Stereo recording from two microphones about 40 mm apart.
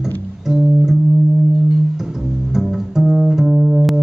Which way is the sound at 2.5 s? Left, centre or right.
Centre.